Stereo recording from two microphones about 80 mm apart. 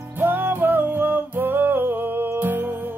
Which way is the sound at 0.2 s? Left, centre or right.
Right.